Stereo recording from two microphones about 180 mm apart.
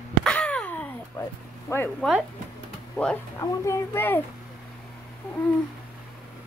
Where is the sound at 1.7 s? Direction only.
10° left (ahead or behind).